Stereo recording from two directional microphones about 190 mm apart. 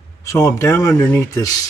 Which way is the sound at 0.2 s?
15° left (ahead or behind).